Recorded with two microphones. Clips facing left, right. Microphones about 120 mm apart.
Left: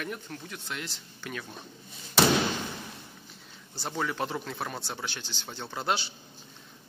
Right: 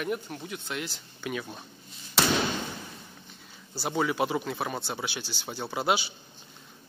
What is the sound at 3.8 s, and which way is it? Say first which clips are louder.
Speech: right 4 dB; 5° right (ahead or behind).